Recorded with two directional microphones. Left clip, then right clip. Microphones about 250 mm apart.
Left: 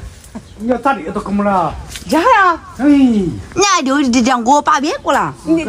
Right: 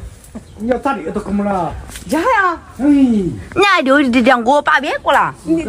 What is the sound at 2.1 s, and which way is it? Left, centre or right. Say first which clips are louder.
Speech: left 4 dB; left.